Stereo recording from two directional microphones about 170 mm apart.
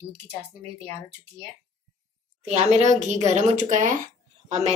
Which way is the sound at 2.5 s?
40° right (ahead or behind).